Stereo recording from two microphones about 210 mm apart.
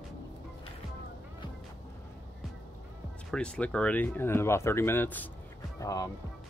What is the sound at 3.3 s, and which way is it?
Speech, 5° left (ahead or behind).